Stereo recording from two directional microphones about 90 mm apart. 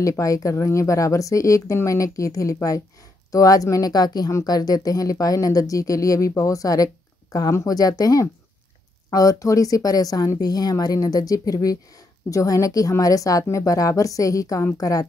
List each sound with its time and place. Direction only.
0.0 s speech: 35° left (ahead or behind)